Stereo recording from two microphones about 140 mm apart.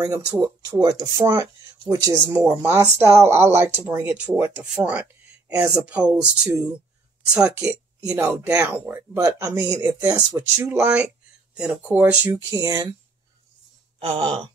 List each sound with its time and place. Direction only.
0.0 s speech: 20° right (ahead or behind)
5.9 s speech: 10° right (ahead or behind)
8.1 s speech: 15° right (ahead or behind)
10.8 s speech: 10° right (ahead or behind)
12.4 s speech: 25° right (ahead or behind)
13.9 s a sound: 40° right (ahead or behind)